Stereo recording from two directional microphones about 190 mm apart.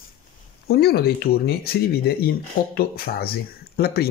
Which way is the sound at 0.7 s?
55° left (ahead or behind).